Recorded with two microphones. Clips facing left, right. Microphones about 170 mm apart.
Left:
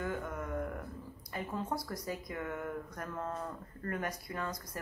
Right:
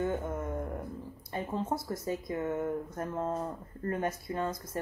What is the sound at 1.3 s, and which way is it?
Speech, 25° right (ahead or behind).